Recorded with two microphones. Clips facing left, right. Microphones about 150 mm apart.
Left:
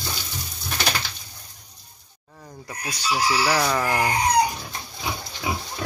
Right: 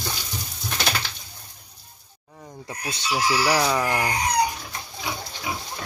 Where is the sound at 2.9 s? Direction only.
25° right (ahead or behind).